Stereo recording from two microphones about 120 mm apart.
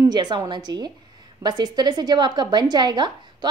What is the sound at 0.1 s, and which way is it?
A woman's voice, 35° right (ahead or behind).